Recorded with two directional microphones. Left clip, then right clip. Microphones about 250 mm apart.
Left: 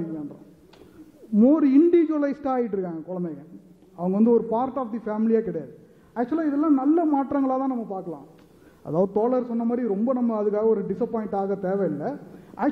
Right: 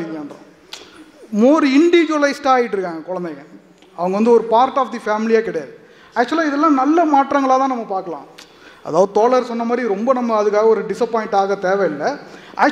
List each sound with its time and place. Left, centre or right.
1.3 s a man's voice: centre
7.9 s speech: right
9.2 s a man's voice: centre